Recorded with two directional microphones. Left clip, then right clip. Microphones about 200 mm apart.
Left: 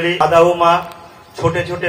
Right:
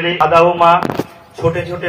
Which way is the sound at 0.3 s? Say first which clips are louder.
Right 2 dB; 30° left (ahead or behind).